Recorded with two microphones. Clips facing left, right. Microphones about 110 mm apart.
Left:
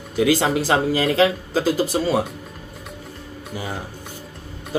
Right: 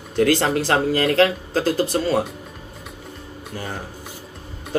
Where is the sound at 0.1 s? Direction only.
5° left (ahead or behind).